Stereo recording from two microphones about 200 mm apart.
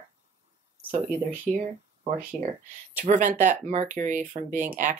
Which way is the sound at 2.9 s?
40° right (ahead or behind).